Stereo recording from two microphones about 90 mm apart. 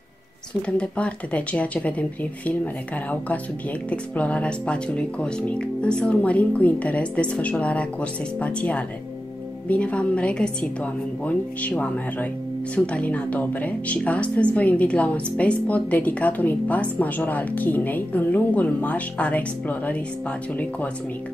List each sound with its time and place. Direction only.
0.6 s speech: 10° left (ahead or behind)